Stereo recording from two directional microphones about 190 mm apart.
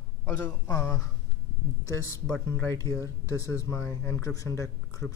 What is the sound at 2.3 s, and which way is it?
Speech, 15° left (ahead or behind).